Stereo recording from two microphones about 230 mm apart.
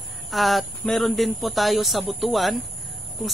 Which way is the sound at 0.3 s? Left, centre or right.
Centre.